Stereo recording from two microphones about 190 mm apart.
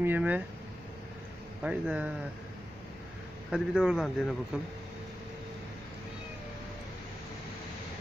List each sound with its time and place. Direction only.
0.0 s a man's voice: 10° right (ahead or behind)
1.6 s a man's voice: 10° right (ahead or behind)
3.5 s speech: 5° right (ahead or behind)